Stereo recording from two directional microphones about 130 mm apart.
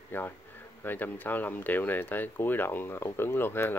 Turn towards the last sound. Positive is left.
turn(degrees=15)  # may be behind; listen again after turning